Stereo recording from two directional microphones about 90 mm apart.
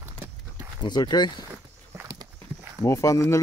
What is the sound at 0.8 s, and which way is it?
Speech, 55° left (ahead or behind).